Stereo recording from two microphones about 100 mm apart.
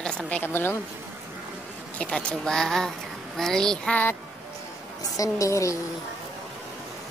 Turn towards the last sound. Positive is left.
turn(degrees=30)  # may be behind; listen again after turning